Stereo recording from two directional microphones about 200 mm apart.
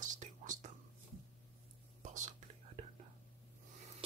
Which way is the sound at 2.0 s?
35° right (ahead or behind).